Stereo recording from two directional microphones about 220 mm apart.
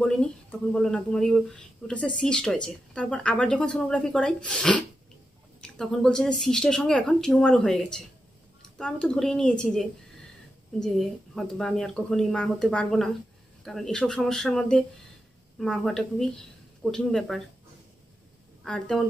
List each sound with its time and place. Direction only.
0.0 s speech: 5° left (ahead or behind)
18.6 s speech: centre (ahead or behind)